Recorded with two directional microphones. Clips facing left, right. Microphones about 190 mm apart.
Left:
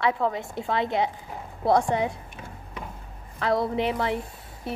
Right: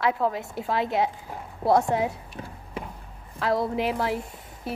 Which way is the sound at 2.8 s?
30° right (ahead or behind).